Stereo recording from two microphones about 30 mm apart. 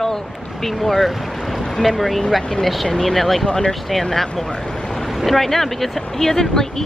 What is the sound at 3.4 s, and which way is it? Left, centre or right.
Speech, left.